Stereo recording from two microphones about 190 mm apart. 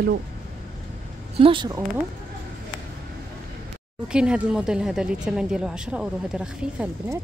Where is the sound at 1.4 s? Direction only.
25° right (ahead or behind).